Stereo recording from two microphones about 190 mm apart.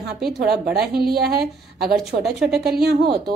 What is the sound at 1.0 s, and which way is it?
Speech, 55° right (ahead or behind).